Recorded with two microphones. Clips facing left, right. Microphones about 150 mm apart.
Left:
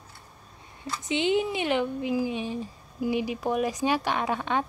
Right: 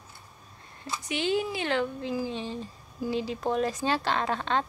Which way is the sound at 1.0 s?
20° left (ahead or behind).